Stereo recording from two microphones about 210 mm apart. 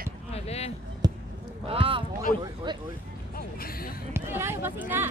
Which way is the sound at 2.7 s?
20° right (ahead or behind).